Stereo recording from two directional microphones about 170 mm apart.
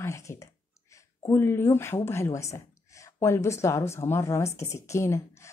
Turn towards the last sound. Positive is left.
turn(degrees=15)  # may be behind; listen again after turning